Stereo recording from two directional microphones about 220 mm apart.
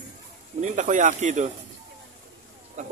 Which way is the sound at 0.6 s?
35° right (ahead or behind).